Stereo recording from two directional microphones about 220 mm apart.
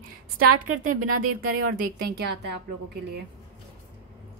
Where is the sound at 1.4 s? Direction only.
40° right (ahead or behind).